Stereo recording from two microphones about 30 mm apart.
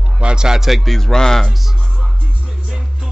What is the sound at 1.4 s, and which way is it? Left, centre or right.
Music, centre.